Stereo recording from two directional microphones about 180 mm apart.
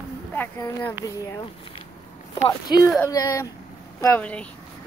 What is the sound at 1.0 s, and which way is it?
Female singing, 20° left (ahead or behind).